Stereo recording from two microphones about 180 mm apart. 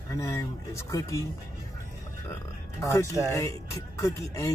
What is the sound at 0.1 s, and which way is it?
Speech, 15° left (ahead or behind).